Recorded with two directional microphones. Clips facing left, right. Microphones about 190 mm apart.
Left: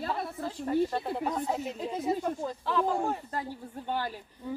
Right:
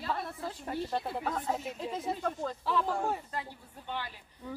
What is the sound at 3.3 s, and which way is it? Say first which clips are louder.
Speech: left 5 dB; 45° left (ahead or behind).